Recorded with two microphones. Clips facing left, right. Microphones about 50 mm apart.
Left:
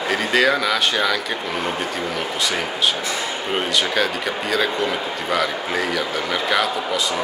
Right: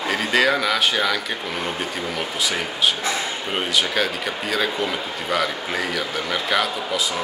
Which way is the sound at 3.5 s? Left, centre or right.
Centre.